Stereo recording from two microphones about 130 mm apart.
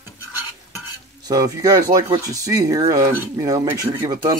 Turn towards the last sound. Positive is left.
turn(degrees=-30)  # may be behind; listen again after turning